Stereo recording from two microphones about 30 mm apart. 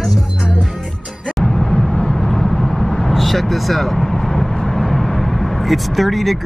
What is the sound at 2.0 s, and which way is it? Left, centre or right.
Vehicle, centre.